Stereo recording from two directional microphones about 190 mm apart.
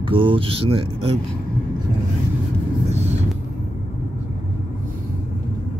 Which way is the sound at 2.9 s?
35° right (ahead or behind).